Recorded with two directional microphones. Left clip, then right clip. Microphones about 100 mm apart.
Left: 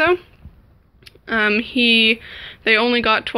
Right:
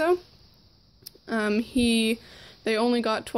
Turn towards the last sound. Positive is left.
turn(degrees=-45)  # may be behind; listen again after turning